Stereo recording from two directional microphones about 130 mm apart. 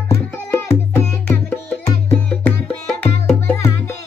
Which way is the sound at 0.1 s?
20° left (ahead or behind).